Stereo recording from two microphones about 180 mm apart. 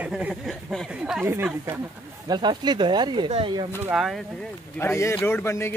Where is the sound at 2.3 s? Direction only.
25° right (ahead or behind).